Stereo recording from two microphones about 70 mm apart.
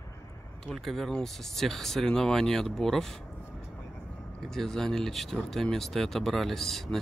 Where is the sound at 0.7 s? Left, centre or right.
Centre.